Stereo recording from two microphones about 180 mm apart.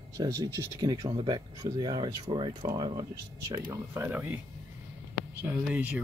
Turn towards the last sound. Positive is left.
turn(degrees=-10)  # may be behind; listen again after turning